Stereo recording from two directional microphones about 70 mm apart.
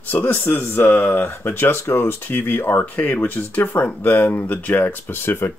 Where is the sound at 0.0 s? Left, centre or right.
Left.